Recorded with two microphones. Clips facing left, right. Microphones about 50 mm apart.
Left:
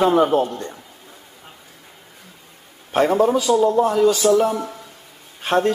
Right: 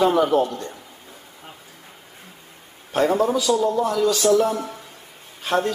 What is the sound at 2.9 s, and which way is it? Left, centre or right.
A man's voice, left.